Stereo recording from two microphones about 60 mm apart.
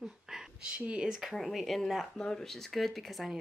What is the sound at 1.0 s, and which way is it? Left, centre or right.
A woman's voice, centre.